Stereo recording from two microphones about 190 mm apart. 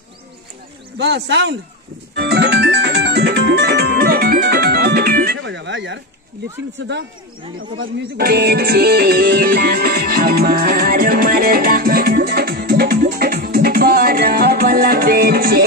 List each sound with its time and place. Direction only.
0.9 s speech: 65° right (ahead or behind)
2.1 s music: 60° right (ahead or behind)
5.4 s speech: 70° right (ahead or behind)
7.5 s speech: 90° right
8.2 s music: 55° right (ahead or behind)